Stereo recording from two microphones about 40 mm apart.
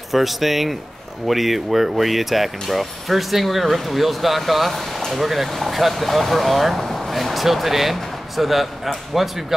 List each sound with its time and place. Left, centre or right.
0.1 s speech: centre